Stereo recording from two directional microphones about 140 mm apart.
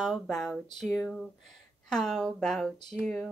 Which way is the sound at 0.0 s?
Centre (ahead or behind).